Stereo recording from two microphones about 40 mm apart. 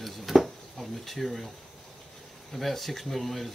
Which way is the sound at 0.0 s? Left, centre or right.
Centre.